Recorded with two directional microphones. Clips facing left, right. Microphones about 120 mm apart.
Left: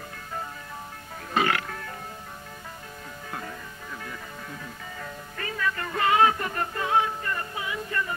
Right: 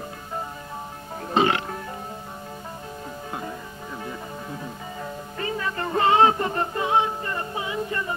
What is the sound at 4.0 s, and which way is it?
Music, 25° right (ahead or behind).